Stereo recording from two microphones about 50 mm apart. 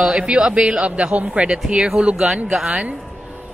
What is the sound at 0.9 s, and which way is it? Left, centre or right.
Speech, right.